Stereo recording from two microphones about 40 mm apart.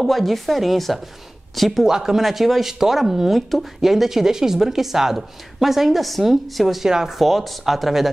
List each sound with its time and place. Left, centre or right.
0.0 s speech: centre
1.9 s speech: centre
2.1 s speech: centre
6.9 s speech: centre
7.2 s speech: centre